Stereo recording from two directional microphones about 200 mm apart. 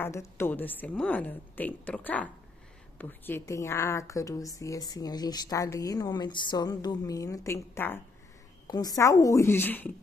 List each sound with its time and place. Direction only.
0.0 s a woman's voice: 15° left (ahead or behind)